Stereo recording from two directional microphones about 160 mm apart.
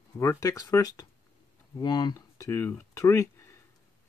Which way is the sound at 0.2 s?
20° left (ahead or behind).